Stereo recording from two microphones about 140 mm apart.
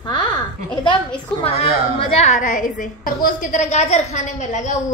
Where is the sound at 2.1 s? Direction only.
55° left (ahead or behind).